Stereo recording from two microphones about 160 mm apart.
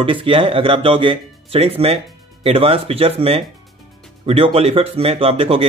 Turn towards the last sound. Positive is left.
turn(degrees=-35)  # may be behind; listen again after turning